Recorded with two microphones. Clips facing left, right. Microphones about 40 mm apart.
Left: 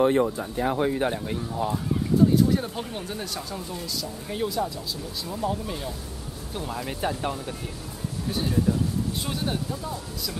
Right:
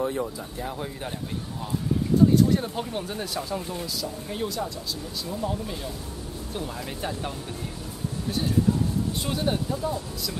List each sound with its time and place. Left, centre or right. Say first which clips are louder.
0.0 s speech: left 7 dB; left
2.3 s speech: right 1 dB; centre
3.5 s speech: right 3 dB; right
3.8 s speech: right 1 dB; centre
9.2 s speech: right 2 dB; centre